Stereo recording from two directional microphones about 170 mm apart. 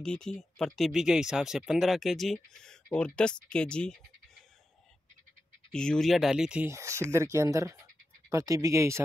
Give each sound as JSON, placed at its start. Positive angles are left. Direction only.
{"t": 0.0, "sound": "speech", "side_deg": 5}
{"t": 5.7, "sound": "speech", "side_deg": 5}